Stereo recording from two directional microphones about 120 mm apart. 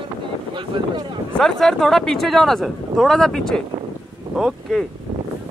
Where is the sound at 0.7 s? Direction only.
40° right (ahead or behind).